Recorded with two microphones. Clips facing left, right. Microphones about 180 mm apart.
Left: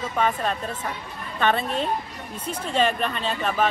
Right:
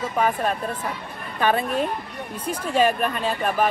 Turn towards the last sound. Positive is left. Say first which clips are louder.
# right 2 dB
turn(degrees=-10)  # may be behind; listen again after turning